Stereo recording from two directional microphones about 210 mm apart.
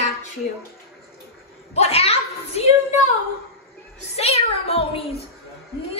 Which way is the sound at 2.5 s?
30° left (ahead or behind).